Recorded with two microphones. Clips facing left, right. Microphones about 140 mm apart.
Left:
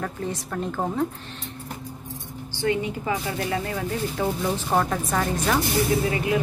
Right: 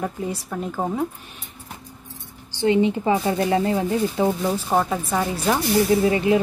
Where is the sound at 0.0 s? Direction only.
10° right (ahead or behind).